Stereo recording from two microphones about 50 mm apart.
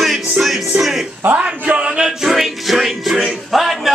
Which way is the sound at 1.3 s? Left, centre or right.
Right.